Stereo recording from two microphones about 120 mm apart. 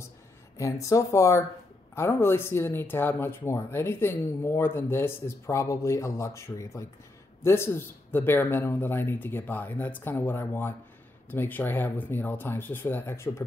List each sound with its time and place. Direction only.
0.6 s speech: 25° left (ahead or behind)